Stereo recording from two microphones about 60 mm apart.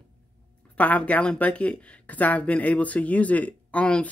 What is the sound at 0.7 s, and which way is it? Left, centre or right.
Speech, left.